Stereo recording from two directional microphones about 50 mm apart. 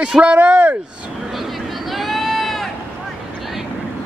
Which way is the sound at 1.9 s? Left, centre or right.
Centre.